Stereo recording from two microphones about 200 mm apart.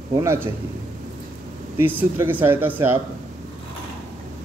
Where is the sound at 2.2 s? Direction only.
10° right (ahead or behind).